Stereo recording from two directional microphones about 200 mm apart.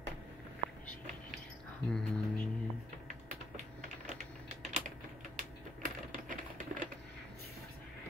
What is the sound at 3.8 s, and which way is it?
Typing, 40° right (ahead or behind).